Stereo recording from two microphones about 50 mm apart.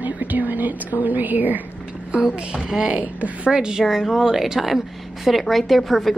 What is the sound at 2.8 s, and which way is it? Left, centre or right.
Speech, right.